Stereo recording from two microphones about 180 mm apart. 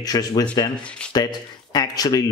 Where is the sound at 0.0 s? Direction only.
20° left (ahead or behind).